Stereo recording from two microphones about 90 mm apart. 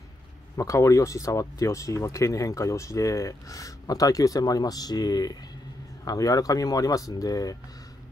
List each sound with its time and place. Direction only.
0.6 s speech: 35° left (ahead or behind)